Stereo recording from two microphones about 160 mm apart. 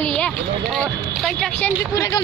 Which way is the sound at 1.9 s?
20° left (ahead or behind).